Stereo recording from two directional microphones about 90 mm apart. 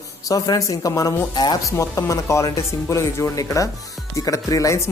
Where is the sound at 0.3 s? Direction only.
40° left (ahead or behind).